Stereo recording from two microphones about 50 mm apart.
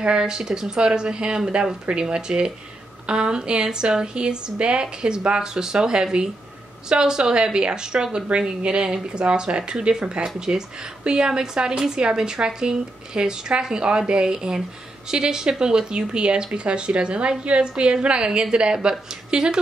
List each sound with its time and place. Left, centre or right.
0.0 s a woman's voice: centre